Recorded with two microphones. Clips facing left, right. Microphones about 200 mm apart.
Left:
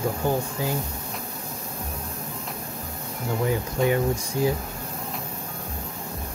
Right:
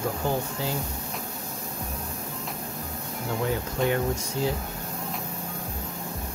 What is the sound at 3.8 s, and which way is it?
Speech, centre (ahead or behind).